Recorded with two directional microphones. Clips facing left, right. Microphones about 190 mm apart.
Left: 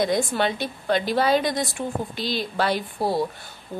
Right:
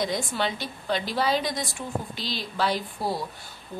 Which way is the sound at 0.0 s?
55° left (ahead or behind).